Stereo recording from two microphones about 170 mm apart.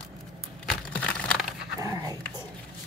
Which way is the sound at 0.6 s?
10° left (ahead or behind).